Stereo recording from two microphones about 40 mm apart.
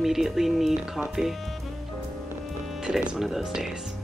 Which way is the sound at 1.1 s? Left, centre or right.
Centre.